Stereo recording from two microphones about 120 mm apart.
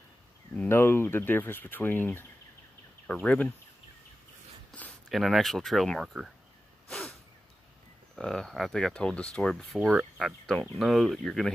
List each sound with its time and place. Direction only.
0.6 s speech: 20° left (ahead or behind)
5.1 s speech: centre (ahead or behind)
6.9 s a sound: 5° left (ahead or behind)
8.2 s speech: 5° left (ahead or behind)